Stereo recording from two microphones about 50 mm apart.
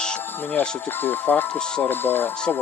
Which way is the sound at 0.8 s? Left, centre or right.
Left.